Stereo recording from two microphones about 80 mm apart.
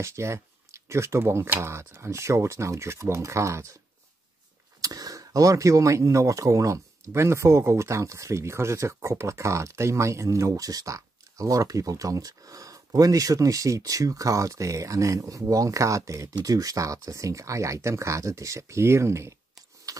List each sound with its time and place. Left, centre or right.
0.0 s speech: right
4.8 s speech: right
19.9 s keys jangling: right